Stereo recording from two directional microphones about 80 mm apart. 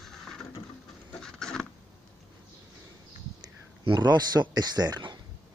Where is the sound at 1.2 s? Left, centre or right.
Centre.